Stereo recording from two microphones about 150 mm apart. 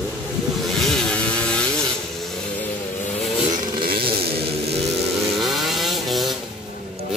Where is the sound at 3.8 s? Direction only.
90° right.